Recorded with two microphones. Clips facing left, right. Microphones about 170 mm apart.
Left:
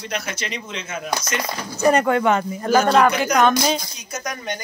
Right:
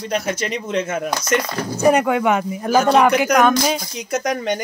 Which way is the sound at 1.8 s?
15° right (ahead or behind).